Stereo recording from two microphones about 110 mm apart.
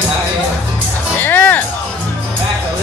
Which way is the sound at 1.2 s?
15° left (ahead or behind).